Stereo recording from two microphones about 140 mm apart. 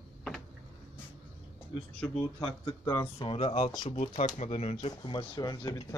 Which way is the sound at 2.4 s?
35° left (ahead or behind).